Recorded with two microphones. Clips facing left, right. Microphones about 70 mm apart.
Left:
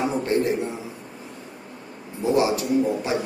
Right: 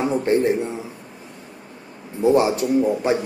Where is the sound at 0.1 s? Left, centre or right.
Right.